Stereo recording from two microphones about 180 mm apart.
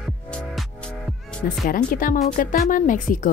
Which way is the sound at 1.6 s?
50° left (ahead or behind).